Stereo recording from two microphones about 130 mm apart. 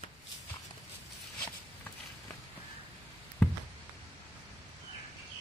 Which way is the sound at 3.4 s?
5° left (ahead or behind).